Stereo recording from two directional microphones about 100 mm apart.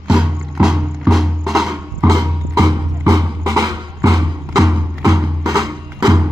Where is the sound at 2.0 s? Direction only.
35° right (ahead or behind).